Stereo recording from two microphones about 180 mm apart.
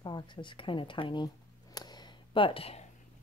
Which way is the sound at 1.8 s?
25° left (ahead or behind).